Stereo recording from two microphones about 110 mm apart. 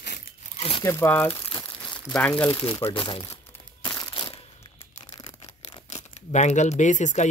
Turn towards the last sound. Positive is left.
turn(degrees=90)